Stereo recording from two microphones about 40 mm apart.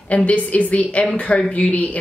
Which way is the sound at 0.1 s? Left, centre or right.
Left.